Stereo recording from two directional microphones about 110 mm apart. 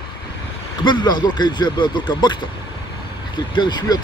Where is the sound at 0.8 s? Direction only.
45° left (ahead or behind).